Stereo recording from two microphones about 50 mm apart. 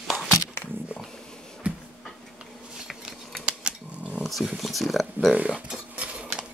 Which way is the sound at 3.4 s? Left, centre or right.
Right.